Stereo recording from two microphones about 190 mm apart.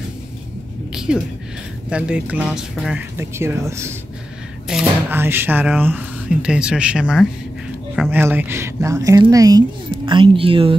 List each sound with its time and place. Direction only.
0.9 s a sound: 5° right (ahead or behind)
1.9 s speech: 5° right (ahead or behind)
3.2 s speech: 15° right (ahead or behind)